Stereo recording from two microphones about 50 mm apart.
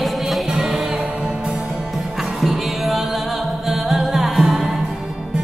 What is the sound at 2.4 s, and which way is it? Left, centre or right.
Music, centre.